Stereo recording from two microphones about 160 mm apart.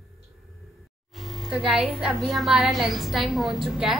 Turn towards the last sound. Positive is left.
turn(degrees=0)  # may be behind; listen again after turning